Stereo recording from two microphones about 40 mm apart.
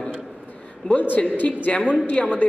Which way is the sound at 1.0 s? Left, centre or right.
Left.